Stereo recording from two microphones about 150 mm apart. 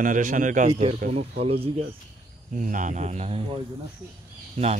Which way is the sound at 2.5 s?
60° right (ahead or behind).